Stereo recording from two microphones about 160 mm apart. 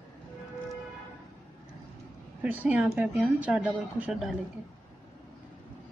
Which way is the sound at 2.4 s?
10° right (ahead or behind).